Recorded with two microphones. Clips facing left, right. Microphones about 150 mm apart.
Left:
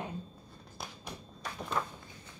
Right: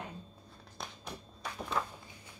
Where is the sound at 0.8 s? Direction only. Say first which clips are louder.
Even; 5° left (ahead or behind).